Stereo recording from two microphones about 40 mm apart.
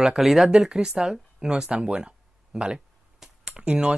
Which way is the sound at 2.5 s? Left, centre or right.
Centre.